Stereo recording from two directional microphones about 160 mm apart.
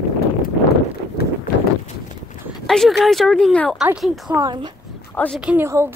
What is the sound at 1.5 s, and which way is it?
Clip-clop, 65° left (ahead or behind).